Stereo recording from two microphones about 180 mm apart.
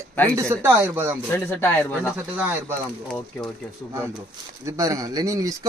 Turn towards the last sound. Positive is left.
turn(degrees=-20)  # may be behind; listen again after turning